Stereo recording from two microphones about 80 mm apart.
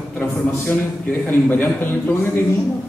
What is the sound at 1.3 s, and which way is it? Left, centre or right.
Speech, left.